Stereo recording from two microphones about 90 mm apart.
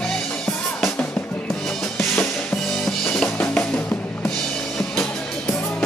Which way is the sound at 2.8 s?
5° left (ahead or behind).